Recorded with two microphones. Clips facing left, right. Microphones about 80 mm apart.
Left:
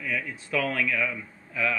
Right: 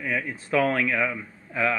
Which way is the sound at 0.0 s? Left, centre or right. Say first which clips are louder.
Right 3 dB; right.